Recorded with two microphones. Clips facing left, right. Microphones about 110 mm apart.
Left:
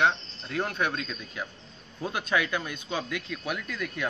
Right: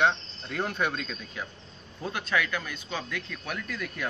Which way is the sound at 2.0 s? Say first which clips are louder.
Left 1 dB; 15° left (ahead or behind).